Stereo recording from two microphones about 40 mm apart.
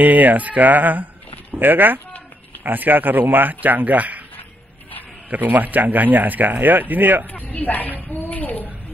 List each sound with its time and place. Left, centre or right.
0.0 s speech: right
5.4 s speech: right
7.3 s a child's voice: left